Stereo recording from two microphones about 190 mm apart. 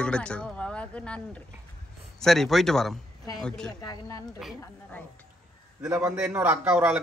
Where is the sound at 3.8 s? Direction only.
20° left (ahead or behind).